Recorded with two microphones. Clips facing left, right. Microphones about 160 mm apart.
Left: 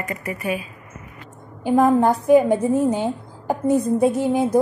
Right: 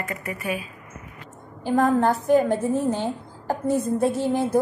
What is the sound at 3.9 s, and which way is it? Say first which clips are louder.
Speech: left 4 dB; 20° left (ahead or behind).